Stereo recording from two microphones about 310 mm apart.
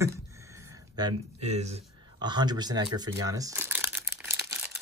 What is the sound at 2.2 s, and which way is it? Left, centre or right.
Crumpling, centre.